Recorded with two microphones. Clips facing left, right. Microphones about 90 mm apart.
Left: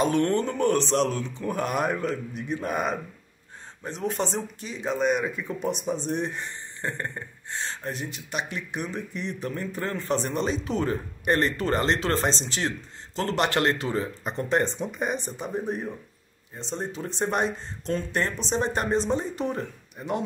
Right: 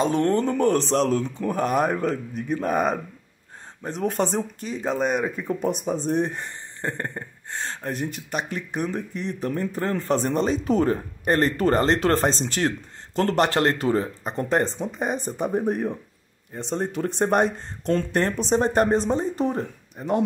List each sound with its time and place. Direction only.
0.0 s speech: 35° right (ahead or behind)